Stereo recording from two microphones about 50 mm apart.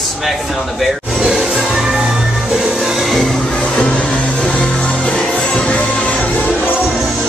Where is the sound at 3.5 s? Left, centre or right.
Left.